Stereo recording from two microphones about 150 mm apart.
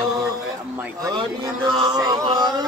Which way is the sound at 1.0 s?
30° right (ahead or behind).